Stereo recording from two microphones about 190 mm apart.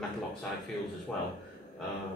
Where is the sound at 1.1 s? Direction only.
5° left (ahead or behind).